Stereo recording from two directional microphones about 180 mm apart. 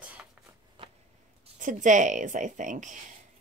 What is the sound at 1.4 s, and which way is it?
Speech, 45° right (ahead or behind).